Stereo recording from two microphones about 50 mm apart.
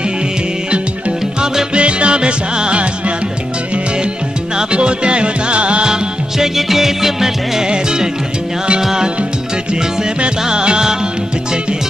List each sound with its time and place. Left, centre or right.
1.4 s music: centre
4.6 s music: right
6.3 s music: centre
10.4 s music: centre